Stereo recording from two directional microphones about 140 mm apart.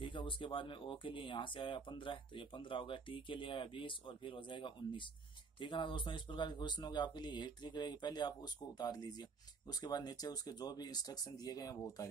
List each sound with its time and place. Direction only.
0.0 s speech: 35° left (ahead or behind)